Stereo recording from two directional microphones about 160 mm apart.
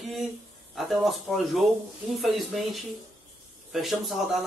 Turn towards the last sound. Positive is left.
turn(degrees=0)  # may be behind; listen again after turning